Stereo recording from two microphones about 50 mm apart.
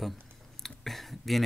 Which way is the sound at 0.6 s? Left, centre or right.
Centre.